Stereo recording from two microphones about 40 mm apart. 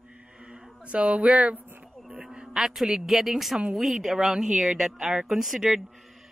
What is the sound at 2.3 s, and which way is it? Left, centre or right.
A woman's voice, centre.